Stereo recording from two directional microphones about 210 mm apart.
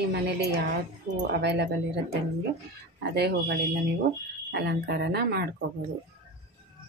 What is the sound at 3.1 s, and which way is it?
Speech, 50° right (ahead or behind).